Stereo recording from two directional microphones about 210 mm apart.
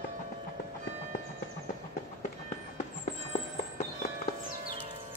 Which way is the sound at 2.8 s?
35° left (ahead or behind).